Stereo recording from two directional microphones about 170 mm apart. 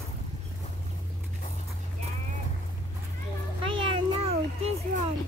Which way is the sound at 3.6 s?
30° right (ahead or behind).